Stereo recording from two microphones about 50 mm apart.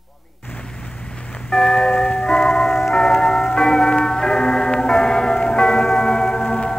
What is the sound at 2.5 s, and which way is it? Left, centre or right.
Music, centre.